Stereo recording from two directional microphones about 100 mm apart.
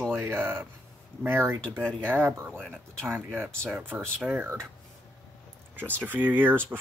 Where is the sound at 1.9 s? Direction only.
10° left (ahead or behind).